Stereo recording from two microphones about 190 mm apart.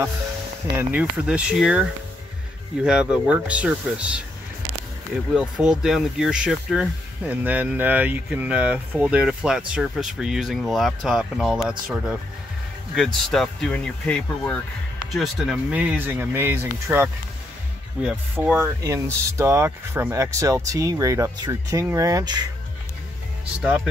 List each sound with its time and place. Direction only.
0.7 s speech: 5° right (ahead or behind)
12.9 s speech: centre (ahead or behind); by 22.5 s 20° right (ahead or behind)
23.6 s speech: 5° right (ahead or behind)